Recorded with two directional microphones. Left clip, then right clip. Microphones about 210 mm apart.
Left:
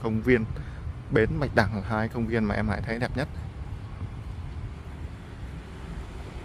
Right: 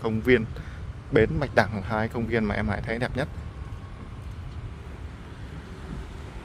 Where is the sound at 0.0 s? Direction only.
10° right (ahead or behind).